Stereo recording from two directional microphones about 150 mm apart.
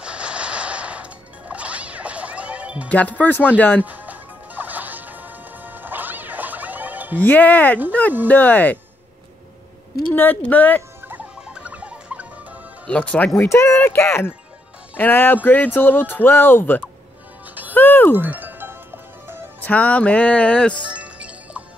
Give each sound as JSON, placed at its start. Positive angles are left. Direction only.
{"t": 0.0, "sound": "a sound", "side_deg": -5}
{"t": 1.5, "sound": "music", "side_deg": -10}
{"t": 2.9, "sound": "speech", "side_deg": 10}
{"t": 3.8, "sound": "music", "side_deg": -10}
{"t": 7.2, "sound": "speech", "side_deg": 10}
{"t": 10.1, "sound": "speech", "side_deg": 10}
{"t": 11.1, "sound": "rodents", "side_deg": -10}
{"t": 12.8, "sound": "speech", "side_deg": 5}
{"t": 13.3, "sound": "speech", "side_deg": 20}
{"t": 17.6, "sound": "music", "side_deg": 15}
{"t": 18.1, "sound": "music", "side_deg": -10}
{"t": 19.6, "sound": "speech", "side_deg": 10}
{"t": 20.9, "sound": "music", "side_deg": -10}